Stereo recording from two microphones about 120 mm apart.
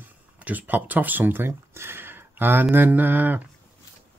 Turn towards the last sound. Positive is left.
turn(degrees=-15)  # may be behind; listen again after turning